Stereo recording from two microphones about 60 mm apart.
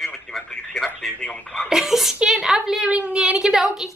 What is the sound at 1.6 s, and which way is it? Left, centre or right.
A woman's voice, centre.